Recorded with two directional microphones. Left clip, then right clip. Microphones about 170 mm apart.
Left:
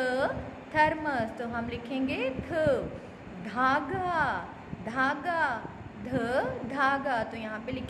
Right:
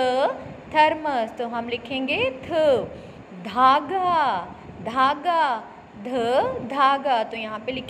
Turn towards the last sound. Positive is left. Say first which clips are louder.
# right 7 dB
turn(degrees=-20)  # may be behind; listen again after turning